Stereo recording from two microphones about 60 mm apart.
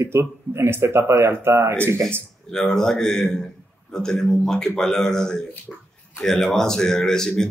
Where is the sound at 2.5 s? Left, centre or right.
Centre.